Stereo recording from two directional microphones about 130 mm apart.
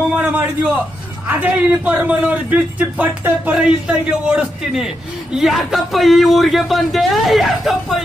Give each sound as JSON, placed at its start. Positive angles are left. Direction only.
{"t": 0.1, "sound": "a man's voice", "side_deg": -10}